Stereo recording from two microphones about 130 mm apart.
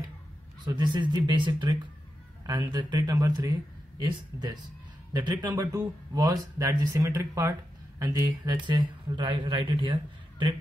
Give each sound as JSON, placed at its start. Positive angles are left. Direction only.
{"t": 0.7, "sound": "speech", "side_deg": -35}
{"t": 5.1, "sound": "speech", "side_deg": -35}